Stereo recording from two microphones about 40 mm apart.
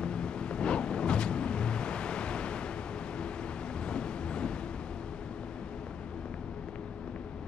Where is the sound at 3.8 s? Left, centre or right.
Left.